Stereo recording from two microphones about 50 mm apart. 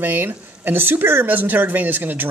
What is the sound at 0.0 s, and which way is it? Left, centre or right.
Speech, right.